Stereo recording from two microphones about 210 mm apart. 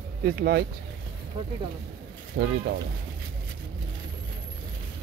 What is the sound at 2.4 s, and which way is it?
Speech, 50° right (ahead or behind).